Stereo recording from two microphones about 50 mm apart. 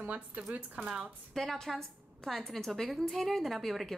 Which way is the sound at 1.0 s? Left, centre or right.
Centre.